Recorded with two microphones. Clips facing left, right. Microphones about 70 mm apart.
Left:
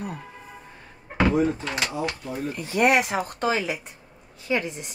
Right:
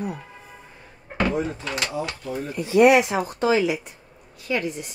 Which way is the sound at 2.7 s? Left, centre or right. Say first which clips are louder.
Right 5 dB; left.